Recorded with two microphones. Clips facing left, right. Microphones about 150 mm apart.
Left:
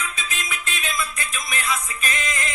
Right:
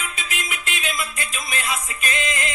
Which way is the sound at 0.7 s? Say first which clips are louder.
Even; 20° right (ahead or behind).